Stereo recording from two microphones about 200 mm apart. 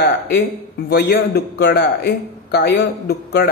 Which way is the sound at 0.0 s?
50° left (ahead or behind).